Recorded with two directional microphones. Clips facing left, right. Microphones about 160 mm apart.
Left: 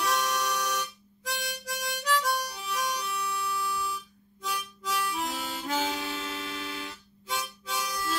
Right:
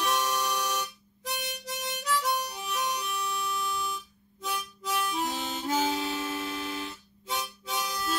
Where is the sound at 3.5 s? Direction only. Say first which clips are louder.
Even; 20° right (ahead or behind).